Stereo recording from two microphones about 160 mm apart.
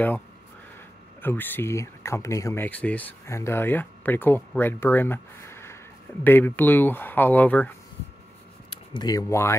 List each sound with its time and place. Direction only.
1.2 s speech: 10° left (ahead or behind)
8.6 s speech: 25° left (ahead or behind)